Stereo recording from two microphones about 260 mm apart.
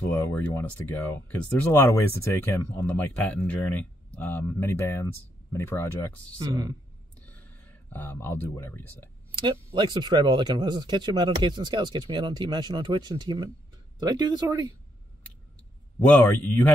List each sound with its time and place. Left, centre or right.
0.1 s speech: centre
6.4 s speech: centre
7.2 s a sound: centre
9.8 s speech: centre
16.1 s speech: centre